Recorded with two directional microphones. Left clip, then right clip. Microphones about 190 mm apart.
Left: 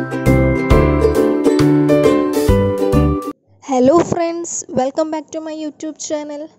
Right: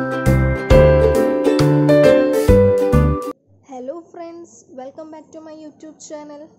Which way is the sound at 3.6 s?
55° left (ahead or behind).